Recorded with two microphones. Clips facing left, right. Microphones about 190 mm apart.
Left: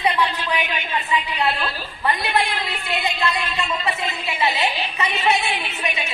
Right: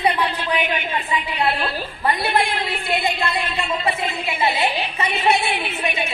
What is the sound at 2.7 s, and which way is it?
Speech, 55° right (ahead or behind).